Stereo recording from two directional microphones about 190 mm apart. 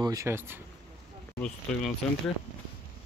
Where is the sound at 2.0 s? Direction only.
Centre (ahead or behind).